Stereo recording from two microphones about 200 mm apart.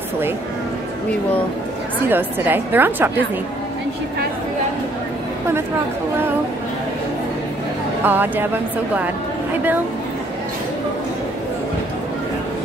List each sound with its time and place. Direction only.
2.0 s a woman's voice: 10° right (ahead or behind)
8.0 s a woman's voice: 10° right (ahead or behind)